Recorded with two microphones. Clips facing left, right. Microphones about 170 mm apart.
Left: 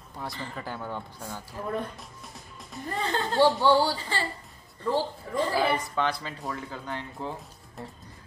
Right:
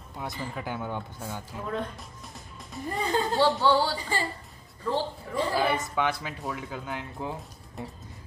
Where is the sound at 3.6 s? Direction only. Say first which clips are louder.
Left 2 dB; 15° left (ahead or behind).